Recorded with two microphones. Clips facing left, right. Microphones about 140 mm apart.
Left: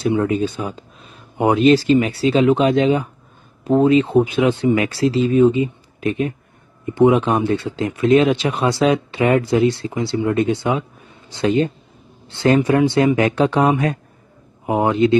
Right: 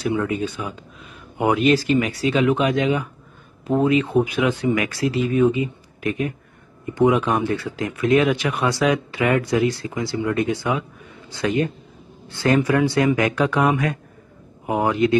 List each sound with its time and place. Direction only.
0.0 s speech: 30° left (ahead or behind)